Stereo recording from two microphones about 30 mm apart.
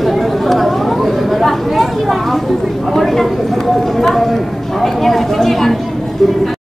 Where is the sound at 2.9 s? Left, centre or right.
Centre.